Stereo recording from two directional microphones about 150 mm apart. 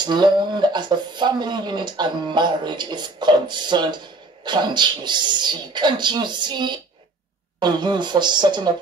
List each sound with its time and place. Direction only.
0.0 s speech: 30° right (ahead or behind)